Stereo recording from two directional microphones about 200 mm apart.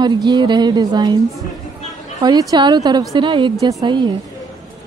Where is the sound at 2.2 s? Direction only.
20° right (ahead or behind).